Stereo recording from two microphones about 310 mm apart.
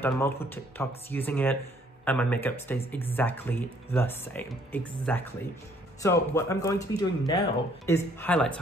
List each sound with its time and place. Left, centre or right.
0.0 s speech: centre